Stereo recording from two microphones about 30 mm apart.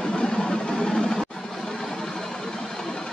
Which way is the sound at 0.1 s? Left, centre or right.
Left.